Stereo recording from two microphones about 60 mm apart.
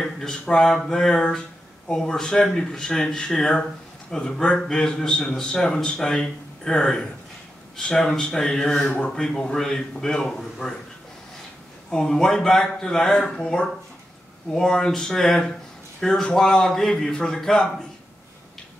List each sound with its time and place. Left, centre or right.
0.0 s a man's voice: centre
11.9 s a man's voice: centre